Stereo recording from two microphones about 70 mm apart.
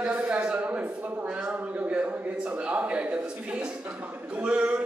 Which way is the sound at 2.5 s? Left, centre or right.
Right.